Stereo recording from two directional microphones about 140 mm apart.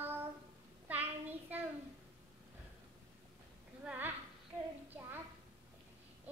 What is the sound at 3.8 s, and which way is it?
Speech, 10° right (ahead or behind).